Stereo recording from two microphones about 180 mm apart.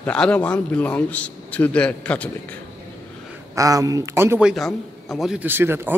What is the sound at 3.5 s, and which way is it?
A man's voice, 20° right (ahead or behind).